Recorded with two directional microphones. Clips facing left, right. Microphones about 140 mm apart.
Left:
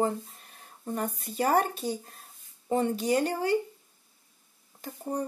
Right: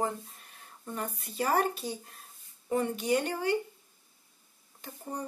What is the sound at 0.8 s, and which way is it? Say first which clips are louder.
Speech: left 5 dB; 40° left (ahead or behind).